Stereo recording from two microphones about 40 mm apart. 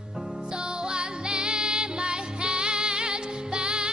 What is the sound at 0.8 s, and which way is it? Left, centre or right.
Music, right.